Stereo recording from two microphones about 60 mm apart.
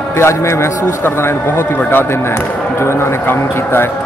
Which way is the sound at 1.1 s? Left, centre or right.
Left.